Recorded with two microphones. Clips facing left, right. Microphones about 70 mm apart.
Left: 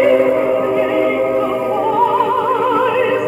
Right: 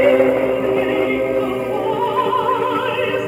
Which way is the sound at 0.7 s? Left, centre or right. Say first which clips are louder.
Left 3 dB; centre.